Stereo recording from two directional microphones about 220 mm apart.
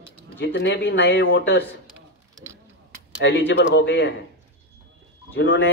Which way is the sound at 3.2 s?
55° left (ahead or behind).